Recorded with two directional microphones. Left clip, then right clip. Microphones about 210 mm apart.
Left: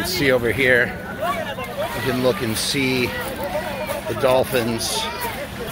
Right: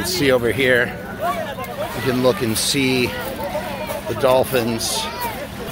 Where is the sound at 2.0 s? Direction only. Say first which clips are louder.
Right 3 dB; 20° right (ahead or behind).